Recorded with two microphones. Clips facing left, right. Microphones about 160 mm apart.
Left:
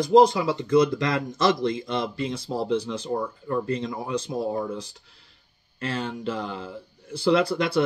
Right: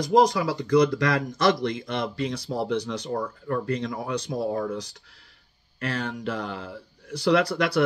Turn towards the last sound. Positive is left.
turn(degrees=25)  # may be behind; listen again after turning